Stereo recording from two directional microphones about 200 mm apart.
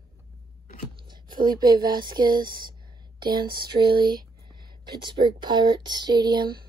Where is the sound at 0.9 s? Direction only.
25° right (ahead or behind).